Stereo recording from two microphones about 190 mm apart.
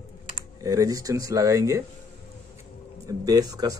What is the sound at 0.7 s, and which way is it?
Speech, 20° right (ahead or behind).